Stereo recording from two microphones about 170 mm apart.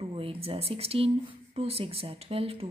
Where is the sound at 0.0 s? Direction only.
35° right (ahead or behind).